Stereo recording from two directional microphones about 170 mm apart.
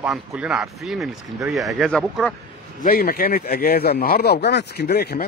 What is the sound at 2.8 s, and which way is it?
Speech, 60° left (ahead or behind).